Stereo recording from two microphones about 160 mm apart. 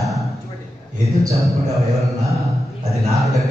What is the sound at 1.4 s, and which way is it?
Speech, centre (ahead or behind).